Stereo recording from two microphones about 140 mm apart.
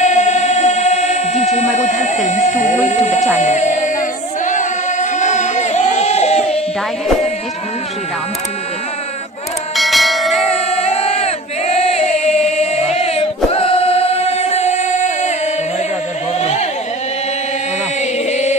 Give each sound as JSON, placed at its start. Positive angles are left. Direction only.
{"t": 0.0, "sound": "singing", "side_deg": 55}
{"t": 1.8, "sound": "speech", "side_deg": 60}
{"t": 3.3, "sound": "music", "side_deg": 55}
{"t": 4.5, "sound": "a sound", "side_deg": 60}
{"t": 9.8, "sound": "church bell", "side_deg": 0}
{"t": 10.3, "sound": "crowd", "side_deg": 50}
{"t": 16.3, "sound": "a sound", "side_deg": 50}
{"t": 18.3, "sound": "music", "side_deg": 55}